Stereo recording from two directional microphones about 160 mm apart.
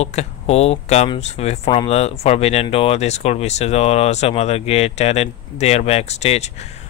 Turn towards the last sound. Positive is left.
turn(degrees=40)  # may be behind; listen again after turning